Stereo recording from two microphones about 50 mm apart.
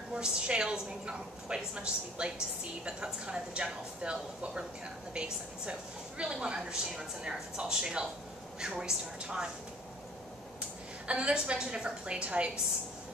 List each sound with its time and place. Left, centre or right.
0.1 s a woman's voice: centre
11.1 s a woman's voice: right